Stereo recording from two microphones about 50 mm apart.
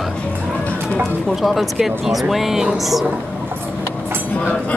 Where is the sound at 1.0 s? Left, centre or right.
Centre.